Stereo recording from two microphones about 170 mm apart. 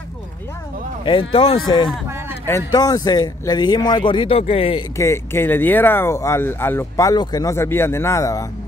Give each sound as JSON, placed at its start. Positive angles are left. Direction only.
{"t": 1.3, "sound": "speech", "side_deg": 30}
{"t": 2.4, "sound": "a man's voice", "side_deg": 20}
{"t": 4.9, "sound": "speech", "side_deg": 15}